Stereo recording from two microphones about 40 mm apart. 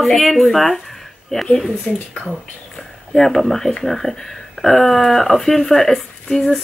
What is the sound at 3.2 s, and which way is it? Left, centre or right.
Speech, centre.